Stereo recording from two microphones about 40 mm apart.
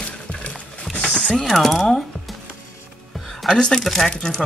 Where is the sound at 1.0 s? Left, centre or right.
Centre.